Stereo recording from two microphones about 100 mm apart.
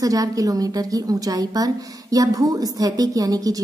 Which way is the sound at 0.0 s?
35° right (ahead or behind).